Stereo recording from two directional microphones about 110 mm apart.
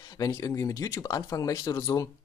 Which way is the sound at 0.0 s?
40° left (ahead or behind).